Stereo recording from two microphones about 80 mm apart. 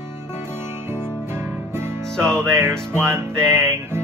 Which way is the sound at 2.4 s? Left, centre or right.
Right.